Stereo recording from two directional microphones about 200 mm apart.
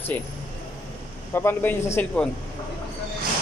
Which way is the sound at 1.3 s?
10° left (ahead or behind).